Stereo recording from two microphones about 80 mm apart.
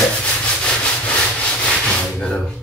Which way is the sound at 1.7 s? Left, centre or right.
Centre.